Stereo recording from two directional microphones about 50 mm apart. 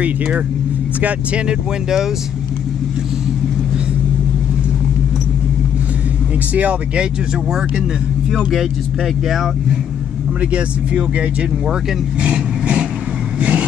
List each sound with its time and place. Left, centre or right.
6.5 s speech: right
8.5 s speech: centre
10.5 s speech: right
13.4 s vehicle: right